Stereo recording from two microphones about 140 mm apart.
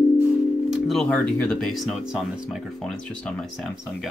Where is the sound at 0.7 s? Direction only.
Centre (ahead or behind).